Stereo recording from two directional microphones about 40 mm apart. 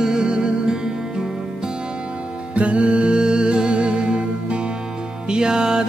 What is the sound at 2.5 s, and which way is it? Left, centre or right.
Music, right.